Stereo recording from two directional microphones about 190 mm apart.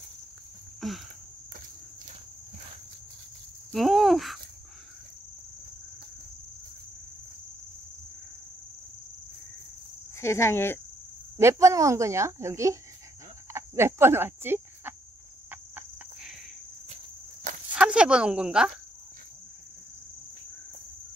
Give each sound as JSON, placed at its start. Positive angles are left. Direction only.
{"t": 0.7, "sound": "cricket", "side_deg": 0}
{"t": 3.7, "sound": "cricket", "side_deg": 0}
{"t": 10.1, "sound": "cricket", "side_deg": 15}
{"t": 11.3, "sound": "speech", "side_deg": -15}
{"t": 13.5, "sound": "cricket", "side_deg": -15}
{"t": 16.9, "sound": "insect", "side_deg": -40}
{"t": 17.7, "sound": "speech", "side_deg": -5}